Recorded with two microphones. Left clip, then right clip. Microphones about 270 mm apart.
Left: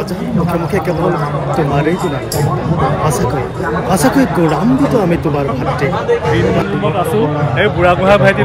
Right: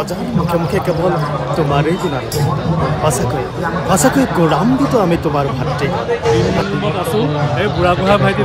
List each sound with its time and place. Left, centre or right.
3.9 s speech: centre
7.6 s speech: centre